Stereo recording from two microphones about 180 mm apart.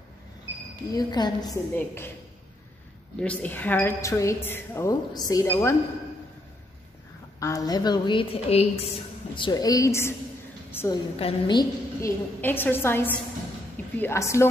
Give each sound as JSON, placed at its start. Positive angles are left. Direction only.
{"t": 0.9, "sound": "a woman's voice", "side_deg": 25}
{"t": 3.2, "sound": "a woman's voice", "side_deg": 10}
{"t": 7.3, "sound": "a woman's voice", "side_deg": 20}
{"t": 11.1, "sound": "a woman's voice", "side_deg": 30}
{"t": 12.4, "sound": "a woman's voice", "side_deg": 10}